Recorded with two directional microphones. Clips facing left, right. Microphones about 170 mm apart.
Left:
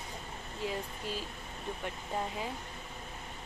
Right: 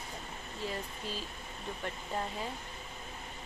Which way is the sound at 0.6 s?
15° left (ahead or behind).